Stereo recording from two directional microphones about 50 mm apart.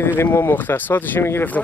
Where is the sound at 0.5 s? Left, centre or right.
Left.